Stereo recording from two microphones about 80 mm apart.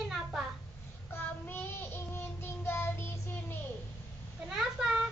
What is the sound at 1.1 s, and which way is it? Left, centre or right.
Child singing, left.